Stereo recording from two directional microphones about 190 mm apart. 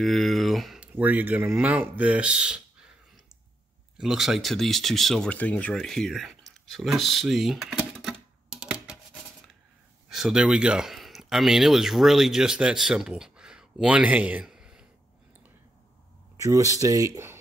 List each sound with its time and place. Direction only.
0.0 s speech: centre (ahead or behind)
4.0 s speech: centre (ahead or behind)
10.0 s speech: centre (ahead or behind)
16.3 s speech: 15° right (ahead or behind)